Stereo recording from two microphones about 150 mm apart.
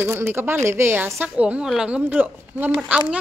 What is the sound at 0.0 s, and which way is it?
A woman's voice, 15° right (ahead or behind).